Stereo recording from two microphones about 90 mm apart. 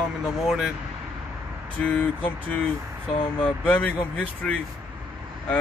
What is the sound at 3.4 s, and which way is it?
Speech, 15° left (ahead or behind).